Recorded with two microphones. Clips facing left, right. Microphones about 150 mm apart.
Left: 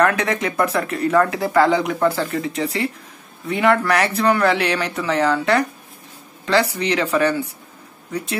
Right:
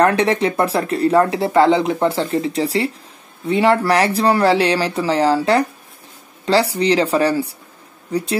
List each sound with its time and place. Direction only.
0.0 s speech: 30° right (ahead or behind)